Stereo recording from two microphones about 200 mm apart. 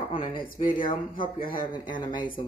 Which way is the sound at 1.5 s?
25° left (ahead or behind).